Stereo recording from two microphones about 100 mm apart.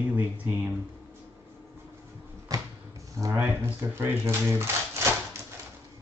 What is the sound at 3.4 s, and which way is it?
Speech, 25° right (ahead or behind).